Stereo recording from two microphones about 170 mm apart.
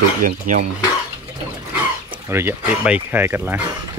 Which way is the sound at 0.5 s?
50° right (ahead or behind).